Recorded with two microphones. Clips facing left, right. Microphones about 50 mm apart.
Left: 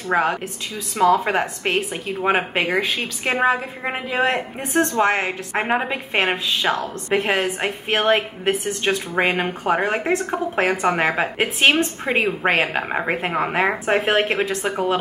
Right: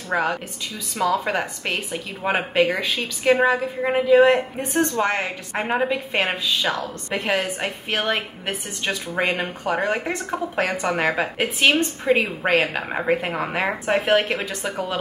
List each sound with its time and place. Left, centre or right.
0.1 s a woman's voice: left
14.3 s a woman's voice: left